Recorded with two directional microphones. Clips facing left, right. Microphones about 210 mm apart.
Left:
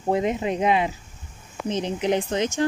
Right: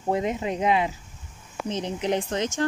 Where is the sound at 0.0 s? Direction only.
20° left (ahead or behind).